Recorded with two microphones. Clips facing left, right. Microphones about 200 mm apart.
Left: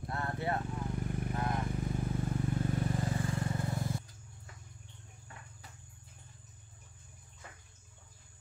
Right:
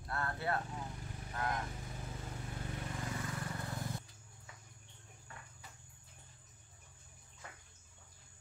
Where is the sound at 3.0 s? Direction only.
30° left (ahead or behind).